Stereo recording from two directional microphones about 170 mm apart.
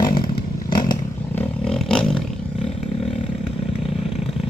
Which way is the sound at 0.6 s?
25° left (ahead or behind).